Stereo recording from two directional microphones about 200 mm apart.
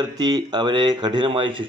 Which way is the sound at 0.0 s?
20° right (ahead or behind).